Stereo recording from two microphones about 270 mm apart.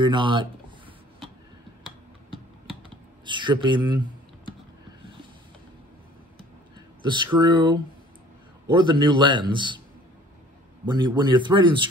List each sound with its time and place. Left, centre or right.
0.0 s a man's voice: centre
3.3 s speech: centre
7.0 s a man's voice: centre
10.9 s a man's voice: centre